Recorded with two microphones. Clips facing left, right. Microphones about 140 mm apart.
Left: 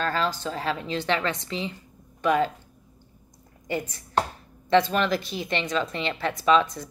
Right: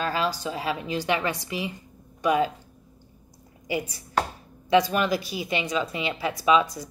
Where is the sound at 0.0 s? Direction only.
10° right (ahead or behind).